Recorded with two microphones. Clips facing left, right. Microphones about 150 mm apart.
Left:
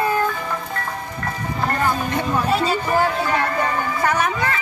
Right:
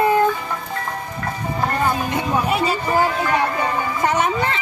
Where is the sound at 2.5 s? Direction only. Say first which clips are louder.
Left 2 dB; 15° right (ahead or behind).